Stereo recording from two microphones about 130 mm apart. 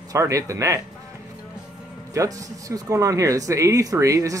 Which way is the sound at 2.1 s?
25° right (ahead or behind).